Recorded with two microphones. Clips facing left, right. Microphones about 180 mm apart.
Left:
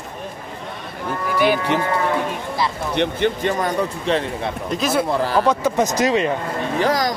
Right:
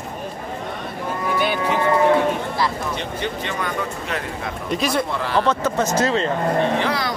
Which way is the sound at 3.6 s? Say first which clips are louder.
Left 5 dB; 30° left (ahead or behind).